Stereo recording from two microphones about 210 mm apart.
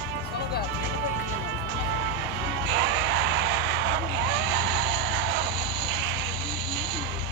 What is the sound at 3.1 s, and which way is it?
Vehicle, 55° right (ahead or behind).